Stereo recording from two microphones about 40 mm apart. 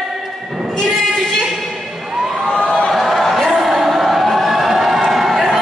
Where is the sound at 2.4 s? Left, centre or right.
Centre.